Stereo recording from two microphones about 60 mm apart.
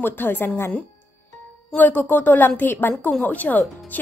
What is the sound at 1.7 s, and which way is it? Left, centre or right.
A woman's voice, left.